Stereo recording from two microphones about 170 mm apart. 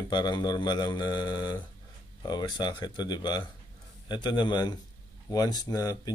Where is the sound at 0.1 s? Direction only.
25° left (ahead or behind).